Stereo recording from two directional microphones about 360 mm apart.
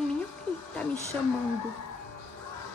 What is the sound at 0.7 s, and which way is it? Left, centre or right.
Speech, centre.